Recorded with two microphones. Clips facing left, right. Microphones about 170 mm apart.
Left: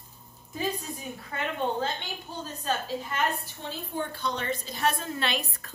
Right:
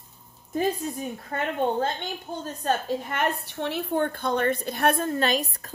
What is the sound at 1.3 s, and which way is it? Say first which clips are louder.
A woman's voice: right 4 dB; 50° right (ahead or behind).